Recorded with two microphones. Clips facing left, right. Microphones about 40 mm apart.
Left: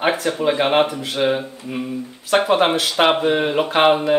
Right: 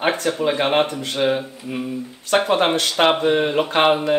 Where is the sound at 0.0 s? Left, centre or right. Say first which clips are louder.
Left 1 dB; centre.